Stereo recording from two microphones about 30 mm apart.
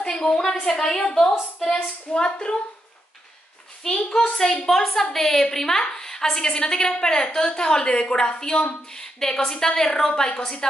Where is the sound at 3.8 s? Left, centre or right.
Left.